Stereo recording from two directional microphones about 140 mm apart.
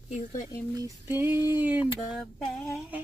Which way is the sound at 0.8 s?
20° right (ahead or behind).